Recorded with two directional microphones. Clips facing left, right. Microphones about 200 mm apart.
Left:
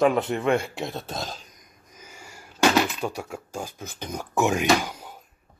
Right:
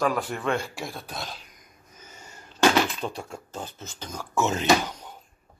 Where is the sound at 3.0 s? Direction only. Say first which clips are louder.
Left 3 dB; 10° left (ahead or behind).